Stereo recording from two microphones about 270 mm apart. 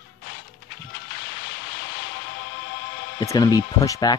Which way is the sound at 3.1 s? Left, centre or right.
Centre.